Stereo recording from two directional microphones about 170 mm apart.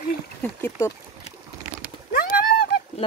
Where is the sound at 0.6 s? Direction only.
15° left (ahead or behind).